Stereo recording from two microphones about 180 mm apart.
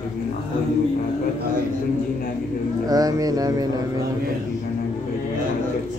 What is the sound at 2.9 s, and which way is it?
Speech, 20° right (ahead or behind).